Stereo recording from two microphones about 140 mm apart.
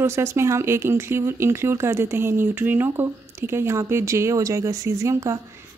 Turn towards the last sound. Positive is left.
turn(degrees=-20)  # may be behind; listen again after turning